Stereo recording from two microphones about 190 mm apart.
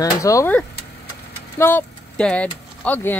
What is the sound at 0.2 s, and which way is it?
Speech, 15° left (ahead or behind).